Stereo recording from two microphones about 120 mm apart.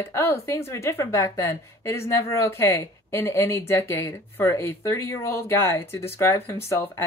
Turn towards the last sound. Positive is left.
turn(degrees=20)  # may be behind; listen again after turning